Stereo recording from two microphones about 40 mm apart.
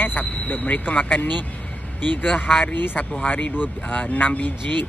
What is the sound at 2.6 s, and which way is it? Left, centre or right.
Speech, left.